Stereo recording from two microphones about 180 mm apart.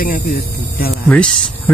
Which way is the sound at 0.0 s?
50° left (ahead or behind).